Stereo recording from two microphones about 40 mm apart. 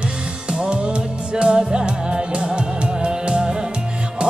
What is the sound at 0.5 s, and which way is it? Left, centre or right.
Music, right.